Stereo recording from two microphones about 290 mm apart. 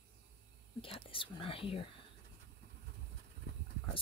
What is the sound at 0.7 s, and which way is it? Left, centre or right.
Speech, centre.